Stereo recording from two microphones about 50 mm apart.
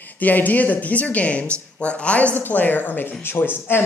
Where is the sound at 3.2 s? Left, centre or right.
Left.